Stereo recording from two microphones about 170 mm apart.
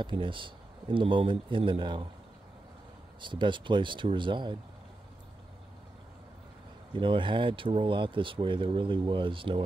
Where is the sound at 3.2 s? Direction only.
30° right (ahead or behind).